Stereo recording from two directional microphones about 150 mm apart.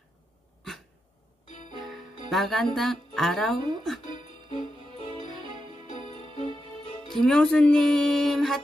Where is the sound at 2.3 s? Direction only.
Centre (ahead or behind).